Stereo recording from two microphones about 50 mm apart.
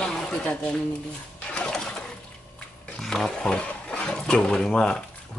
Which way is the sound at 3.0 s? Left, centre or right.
Centre.